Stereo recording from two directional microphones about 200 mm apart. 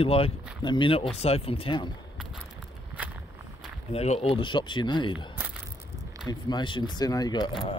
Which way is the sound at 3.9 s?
30° left (ahead or behind).